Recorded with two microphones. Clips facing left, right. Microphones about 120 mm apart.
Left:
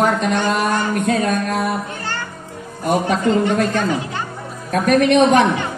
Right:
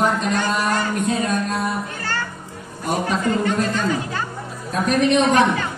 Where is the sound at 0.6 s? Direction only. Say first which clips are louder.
Left 2 dB; 55° left (ahead or behind).